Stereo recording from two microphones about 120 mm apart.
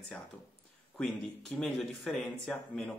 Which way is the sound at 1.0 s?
5° left (ahead or behind).